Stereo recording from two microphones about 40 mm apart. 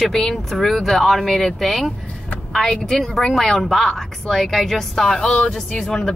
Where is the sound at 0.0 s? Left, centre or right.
Centre.